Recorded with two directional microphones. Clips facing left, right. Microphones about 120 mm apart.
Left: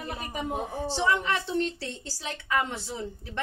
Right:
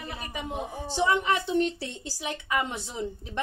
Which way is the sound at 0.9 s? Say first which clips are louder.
Right 2 dB; 15° right (ahead or behind).